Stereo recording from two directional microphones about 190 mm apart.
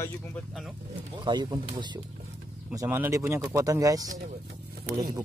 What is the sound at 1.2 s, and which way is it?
Speech, 25° right (ahead or behind).